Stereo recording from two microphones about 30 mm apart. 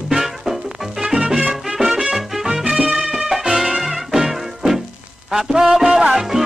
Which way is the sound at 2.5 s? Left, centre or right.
Right.